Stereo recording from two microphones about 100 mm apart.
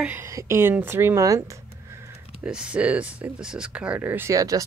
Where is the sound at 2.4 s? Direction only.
10° right (ahead or behind).